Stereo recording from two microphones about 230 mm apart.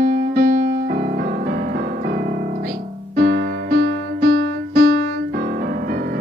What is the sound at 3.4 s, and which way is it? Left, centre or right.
Music, right.